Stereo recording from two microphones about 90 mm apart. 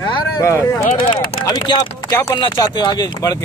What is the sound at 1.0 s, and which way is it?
Speech, 70° left (ahead or behind).